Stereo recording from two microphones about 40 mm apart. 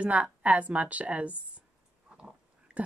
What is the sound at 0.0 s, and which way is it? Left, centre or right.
Speech, right.